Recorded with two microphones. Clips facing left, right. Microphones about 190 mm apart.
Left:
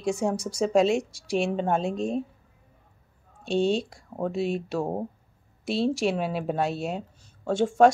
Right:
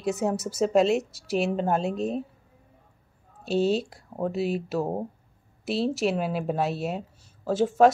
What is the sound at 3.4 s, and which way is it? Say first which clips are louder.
Speech: even; 5° right (ahead or behind).